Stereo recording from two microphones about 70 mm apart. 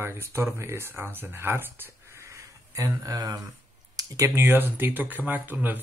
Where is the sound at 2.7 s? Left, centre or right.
Right.